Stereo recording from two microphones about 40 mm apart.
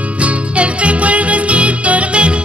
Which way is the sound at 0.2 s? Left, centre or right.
Right.